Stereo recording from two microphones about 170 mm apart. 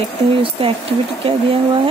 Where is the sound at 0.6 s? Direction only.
35° right (ahead or behind).